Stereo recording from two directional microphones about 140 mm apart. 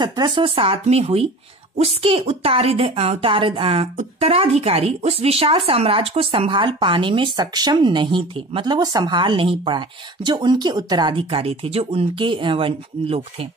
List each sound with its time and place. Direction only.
0.0 s a woman's voice: 30° right (ahead or behind)